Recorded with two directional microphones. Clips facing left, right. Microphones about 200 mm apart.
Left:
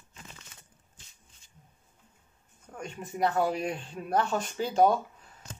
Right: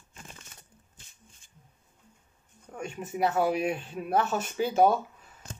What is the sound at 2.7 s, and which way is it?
Speech, 10° right (ahead or behind).